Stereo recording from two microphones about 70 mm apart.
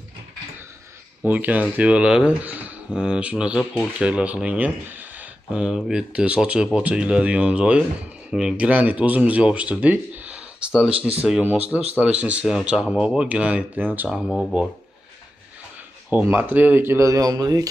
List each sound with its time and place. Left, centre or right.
1.2 s speech: right
5.6 s speech: centre
8.6 s speech: centre
12.4 s speech: centre
13.7 s speech: right
14.1 s speech: centre
16.1 s speech: right
17.1 s speech: right